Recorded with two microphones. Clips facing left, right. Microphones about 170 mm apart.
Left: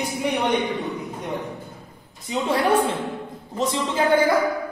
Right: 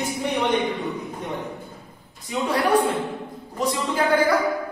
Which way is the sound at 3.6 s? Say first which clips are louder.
Left 1 dB; 25° left (ahead or behind).